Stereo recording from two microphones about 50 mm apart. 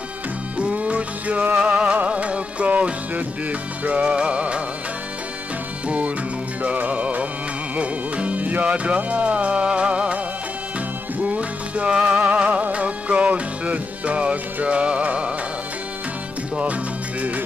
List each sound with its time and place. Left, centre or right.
0.6 s music: right
5.9 s music: right